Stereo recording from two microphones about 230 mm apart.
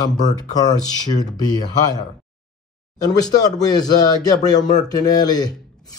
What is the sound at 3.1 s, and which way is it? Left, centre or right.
Speech, centre.